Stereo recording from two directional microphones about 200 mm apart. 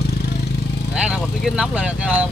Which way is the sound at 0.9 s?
5° right (ahead or behind).